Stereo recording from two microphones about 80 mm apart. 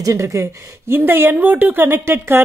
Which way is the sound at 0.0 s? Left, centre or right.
Right.